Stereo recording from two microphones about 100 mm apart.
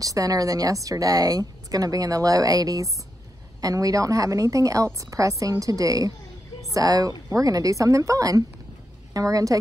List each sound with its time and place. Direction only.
0.0 s speech: 35° right (ahead or behind)